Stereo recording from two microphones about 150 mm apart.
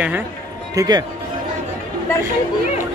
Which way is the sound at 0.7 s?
25° right (ahead or behind).